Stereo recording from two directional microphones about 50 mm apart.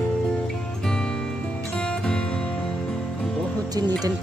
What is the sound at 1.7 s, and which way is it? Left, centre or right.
Music, centre.